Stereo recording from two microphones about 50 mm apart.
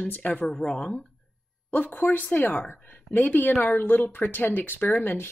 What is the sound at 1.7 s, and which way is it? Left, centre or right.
Speech, left.